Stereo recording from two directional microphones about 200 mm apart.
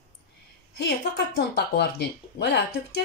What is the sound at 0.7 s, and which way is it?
Speech, 55° left (ahead or behind).